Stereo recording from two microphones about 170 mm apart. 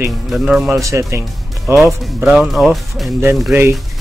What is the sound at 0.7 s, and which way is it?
Speech, 20° right (ahead or behind).